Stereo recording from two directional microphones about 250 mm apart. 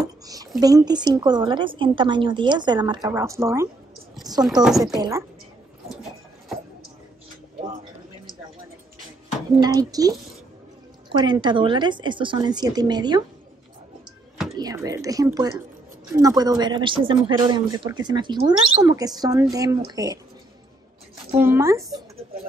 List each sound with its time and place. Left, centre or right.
0.6 s speech: centre
4.2 s chopping: centre
4.6 s speech: centre
4.9 s speech: centre
9.6 s speech: centre
11.1 s speech: centre
14.6 s speech: centre
21.4 s speech: centre